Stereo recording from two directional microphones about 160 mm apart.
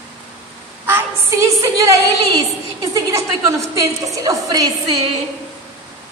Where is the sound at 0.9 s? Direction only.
15° right (ahead or behind).